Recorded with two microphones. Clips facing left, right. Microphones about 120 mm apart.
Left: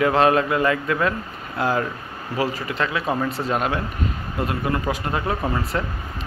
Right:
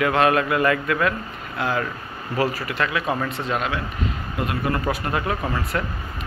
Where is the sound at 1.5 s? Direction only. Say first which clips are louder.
Left 2 dB; 40° left (ahead or behind).